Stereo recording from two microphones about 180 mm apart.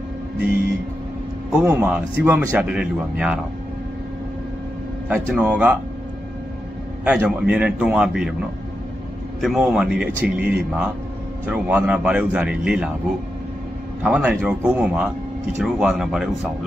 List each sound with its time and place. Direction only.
1.5 s a man's voice: 10° right (ahead or behind)
5.0 s a man's voice: 10° right (ahead or behind)
7.1 s a man's voice: 5° right (ahead or behind)
9.4 s a man's voice: centre (ahead or behind)
14.0 s a man's voice: 5° right (ahead or behind)